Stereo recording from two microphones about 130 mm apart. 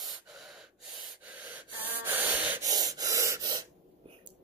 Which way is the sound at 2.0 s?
15° right (ahead or behind).